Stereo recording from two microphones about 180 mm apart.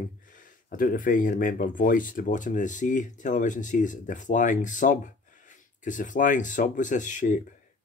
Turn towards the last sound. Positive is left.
turn(degrees=45)  # may be behind; listen again after turning